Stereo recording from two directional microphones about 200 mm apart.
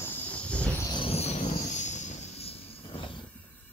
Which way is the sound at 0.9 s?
30° left (ahead or behind).